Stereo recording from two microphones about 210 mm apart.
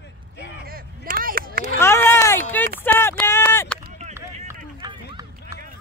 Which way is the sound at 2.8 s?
10° left (ahead or behind).